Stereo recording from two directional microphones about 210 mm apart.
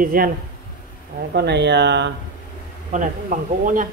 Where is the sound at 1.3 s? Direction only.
55° right (ahead or behind).